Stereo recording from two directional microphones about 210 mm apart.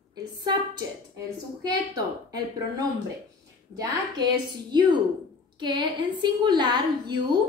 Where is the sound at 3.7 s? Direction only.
15° right (ahead or behind).